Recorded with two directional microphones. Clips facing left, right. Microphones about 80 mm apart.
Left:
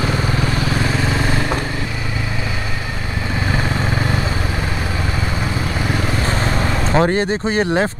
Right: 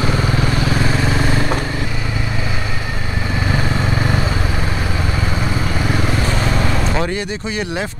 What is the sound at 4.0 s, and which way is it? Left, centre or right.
Vehicle, right.